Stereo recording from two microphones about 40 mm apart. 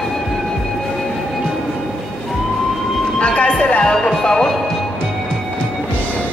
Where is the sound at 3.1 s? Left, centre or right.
Left.